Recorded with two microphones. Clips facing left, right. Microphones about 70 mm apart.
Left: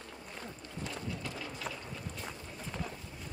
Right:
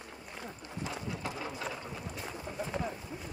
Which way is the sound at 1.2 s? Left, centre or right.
Right.